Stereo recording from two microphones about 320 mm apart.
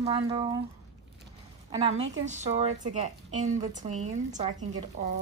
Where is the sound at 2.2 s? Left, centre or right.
Right.